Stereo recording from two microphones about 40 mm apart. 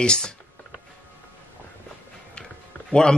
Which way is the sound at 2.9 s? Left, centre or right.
Centre.